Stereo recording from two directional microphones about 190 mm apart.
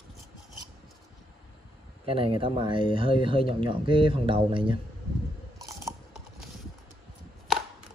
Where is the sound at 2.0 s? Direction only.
30° right (ahead or behind).